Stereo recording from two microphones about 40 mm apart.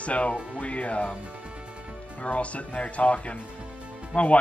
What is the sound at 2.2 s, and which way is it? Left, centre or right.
Speech, left.